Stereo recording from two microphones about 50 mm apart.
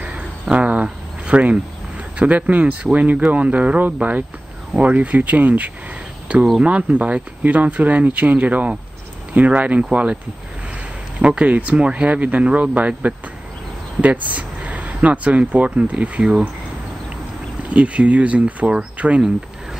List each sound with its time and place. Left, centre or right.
0.0 s cricket: right
0.8 s a sound: right
2.1 s speech: right
11.1 s speech: right
17.6 s speech: right